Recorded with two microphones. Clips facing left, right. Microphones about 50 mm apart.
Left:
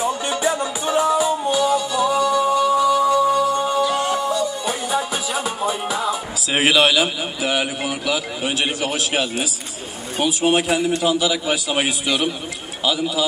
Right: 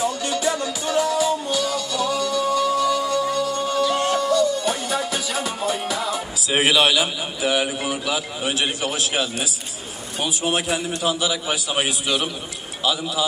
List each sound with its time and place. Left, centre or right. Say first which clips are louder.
0.0 s music: left 2 dB; left
6.5 s a man's voice: left 2 dB; left